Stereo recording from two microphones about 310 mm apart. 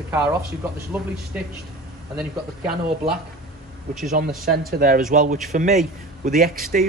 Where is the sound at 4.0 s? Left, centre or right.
Right.